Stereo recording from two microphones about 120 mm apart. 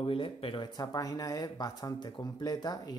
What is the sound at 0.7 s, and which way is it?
Speech, 30° left (ahead or behind).